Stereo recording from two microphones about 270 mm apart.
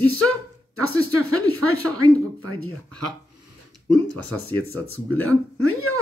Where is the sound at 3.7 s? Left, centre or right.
Right.